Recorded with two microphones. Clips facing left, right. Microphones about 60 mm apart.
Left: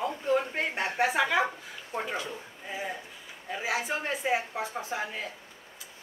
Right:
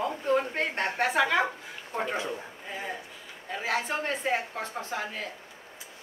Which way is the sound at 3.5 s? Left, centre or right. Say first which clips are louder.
Right 1 dB; centre.